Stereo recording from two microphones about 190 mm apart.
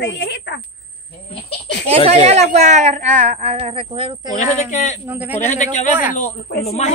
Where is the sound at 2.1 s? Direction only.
35° right (ahead or behind).